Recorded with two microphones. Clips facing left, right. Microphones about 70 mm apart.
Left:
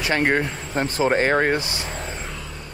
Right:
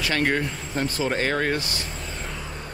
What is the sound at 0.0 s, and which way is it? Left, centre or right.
Speech, left.